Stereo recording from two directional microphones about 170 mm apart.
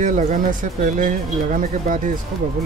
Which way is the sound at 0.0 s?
50° right (ahead or behind).